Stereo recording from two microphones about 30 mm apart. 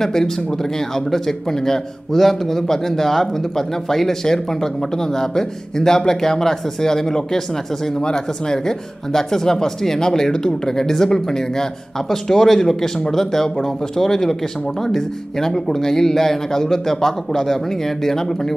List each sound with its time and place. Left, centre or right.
0.0 s a man's voice: centre